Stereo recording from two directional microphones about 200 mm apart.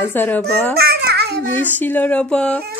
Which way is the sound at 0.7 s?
50° right (ahead or behind).